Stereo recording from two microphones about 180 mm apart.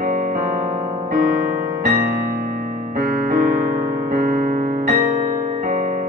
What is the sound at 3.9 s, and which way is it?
Piano, 55° right (ahead or behind).